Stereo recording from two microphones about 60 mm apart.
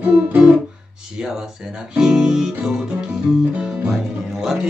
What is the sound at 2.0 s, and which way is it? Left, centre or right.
Music, centre.